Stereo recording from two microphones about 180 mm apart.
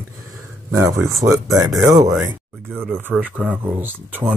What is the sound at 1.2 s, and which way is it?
Speech, 20° right (ahead or behind).